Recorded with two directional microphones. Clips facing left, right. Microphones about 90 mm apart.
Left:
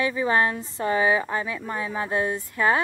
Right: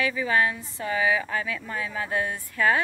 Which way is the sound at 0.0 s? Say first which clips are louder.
Left 2 dB; 30° left (ahead or behind).